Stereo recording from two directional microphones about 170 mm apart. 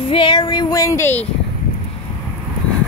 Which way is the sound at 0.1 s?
30° left (ahead or behind).